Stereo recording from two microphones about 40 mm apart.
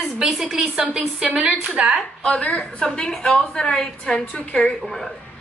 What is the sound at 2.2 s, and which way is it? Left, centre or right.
A woman's voice, left.